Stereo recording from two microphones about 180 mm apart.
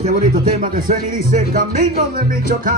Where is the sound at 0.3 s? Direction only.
50° right (ahead or behind).